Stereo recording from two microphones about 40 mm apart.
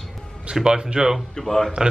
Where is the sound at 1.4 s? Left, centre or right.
Centre.